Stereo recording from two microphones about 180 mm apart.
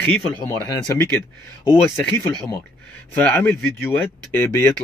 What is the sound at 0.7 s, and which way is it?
Speech, 20° left (ahead or behind).